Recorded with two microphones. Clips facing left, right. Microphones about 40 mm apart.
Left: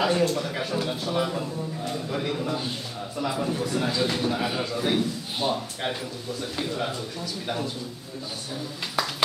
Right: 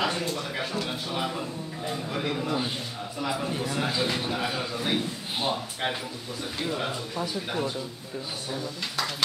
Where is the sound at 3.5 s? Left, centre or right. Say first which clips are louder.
Left 2 dB; centre.